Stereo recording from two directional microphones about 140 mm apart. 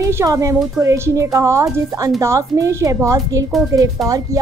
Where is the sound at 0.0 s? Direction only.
25° right (ahead or behind).